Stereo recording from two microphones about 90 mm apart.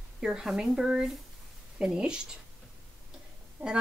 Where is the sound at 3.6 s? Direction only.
20° right (ahead or behind).